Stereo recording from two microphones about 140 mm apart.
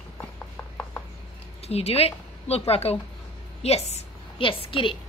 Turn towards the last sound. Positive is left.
turn(degrees=40)  # may be behind; listen again after turning